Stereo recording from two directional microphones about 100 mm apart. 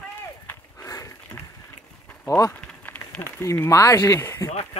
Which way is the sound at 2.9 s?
20° left (ahead or behind).